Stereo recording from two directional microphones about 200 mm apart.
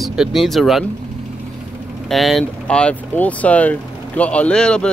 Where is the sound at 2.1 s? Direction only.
Centre (ahead or behind).